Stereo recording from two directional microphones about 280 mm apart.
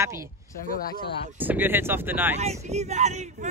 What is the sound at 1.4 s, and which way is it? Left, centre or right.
Speech, centre.